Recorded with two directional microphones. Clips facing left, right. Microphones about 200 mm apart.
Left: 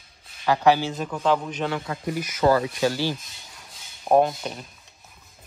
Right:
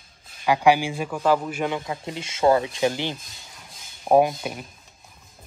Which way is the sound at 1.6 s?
20° right (ahead or behind).